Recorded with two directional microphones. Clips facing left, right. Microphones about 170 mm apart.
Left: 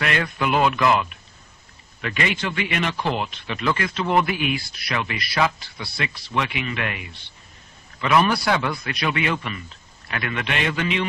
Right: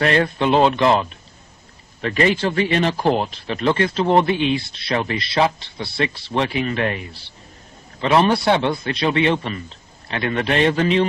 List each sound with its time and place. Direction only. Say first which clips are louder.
0.0 s a man's voice: right 6 dB; 35° right (ahead or behind)